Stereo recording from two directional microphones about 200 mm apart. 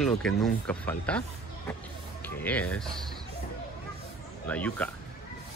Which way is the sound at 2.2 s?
10° left (ahead or behind).